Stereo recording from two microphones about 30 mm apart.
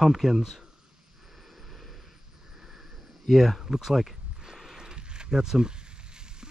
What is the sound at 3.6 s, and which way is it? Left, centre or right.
Speech, centre.